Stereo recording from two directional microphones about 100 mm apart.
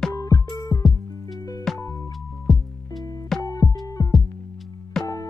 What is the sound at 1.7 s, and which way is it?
Music, 5° left (ahead or behind).